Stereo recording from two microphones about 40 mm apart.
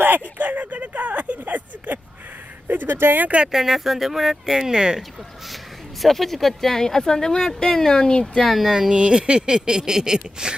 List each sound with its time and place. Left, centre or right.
0.0 s a sound: right
2.7 s speech: right
3.5 s speech: centre
5.5 s speech: centre
8.4 s speech: centre
8.7 s speech: centre
9.0 s speech: right